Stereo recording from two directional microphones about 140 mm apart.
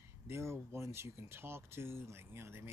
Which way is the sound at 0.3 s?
20° right (ahead or behind).